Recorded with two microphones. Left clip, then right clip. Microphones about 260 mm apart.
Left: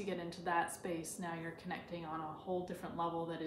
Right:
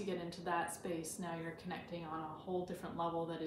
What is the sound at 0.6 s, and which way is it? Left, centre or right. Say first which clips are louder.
Speech: even; centre.